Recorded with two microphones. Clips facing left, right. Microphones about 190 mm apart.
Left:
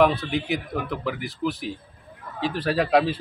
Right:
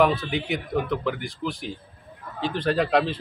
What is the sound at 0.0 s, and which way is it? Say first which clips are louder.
A man's voice: left 1 dB; centre (ahead or behind).